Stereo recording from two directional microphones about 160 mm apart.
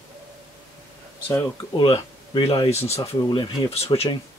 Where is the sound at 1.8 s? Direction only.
35° left (ahead or behind).